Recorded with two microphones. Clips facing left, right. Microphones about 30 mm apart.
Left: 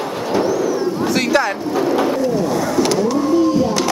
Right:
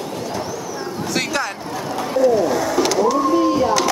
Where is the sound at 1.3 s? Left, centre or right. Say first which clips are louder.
Left 7 dB; centre.